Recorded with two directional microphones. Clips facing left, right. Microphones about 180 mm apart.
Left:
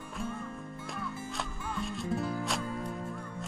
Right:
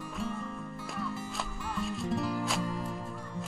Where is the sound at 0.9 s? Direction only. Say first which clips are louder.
Right 2 dB; centre (ahead or behind).